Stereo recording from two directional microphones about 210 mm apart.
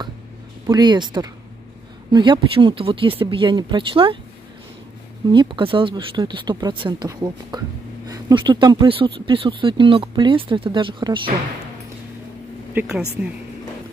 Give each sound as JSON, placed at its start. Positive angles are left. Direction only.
{"t": 0.7, "sound": "speech", "side_deg": -20}
{"t": 5.3, "sound": "speech", "side_deg": -25}
{"t": 12.7, "sound": "speech", "side_deg": -5}